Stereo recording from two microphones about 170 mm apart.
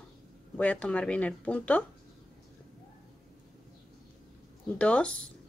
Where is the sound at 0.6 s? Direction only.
10° left (ahead or behind).